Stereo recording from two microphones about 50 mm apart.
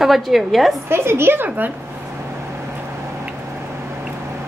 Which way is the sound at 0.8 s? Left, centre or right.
Right.